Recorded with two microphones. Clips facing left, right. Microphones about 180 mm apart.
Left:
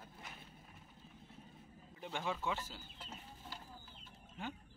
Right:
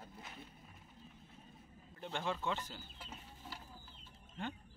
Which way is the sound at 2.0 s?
5° left (ahead or behind).